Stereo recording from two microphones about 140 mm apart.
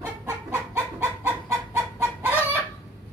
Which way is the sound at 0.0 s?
15° right (ahead or behind).